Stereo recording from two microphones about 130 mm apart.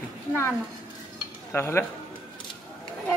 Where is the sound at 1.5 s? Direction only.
15° left (ahead or behind).